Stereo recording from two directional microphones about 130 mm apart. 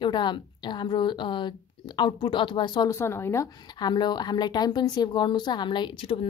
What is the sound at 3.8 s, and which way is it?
A woman's voice, 35° left (ahead or behind).